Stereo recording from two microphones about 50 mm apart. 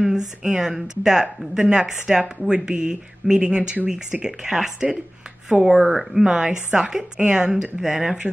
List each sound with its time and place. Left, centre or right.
0.0 s speech: centre
6.2 s speech: centre